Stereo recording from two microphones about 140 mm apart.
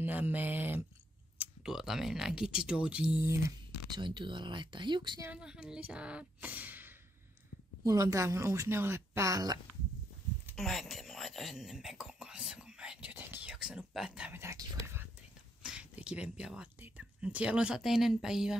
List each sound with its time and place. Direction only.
0.0 s mantra: 10° right (ahead or behind)
1.4 s speech: 5° right (ahead or behind)
3.9 s speech: 35° right (ahead or behind)
5.2 s speech: 10° right (ahead or behind)
7.8 s speech: 25° right (ahead or behind)
10.5 s whispering: centre (ahead or behind)
14.4 s speech: 20° right (ahead or behind)
15.6 s speech: 5° right (ahead or behind)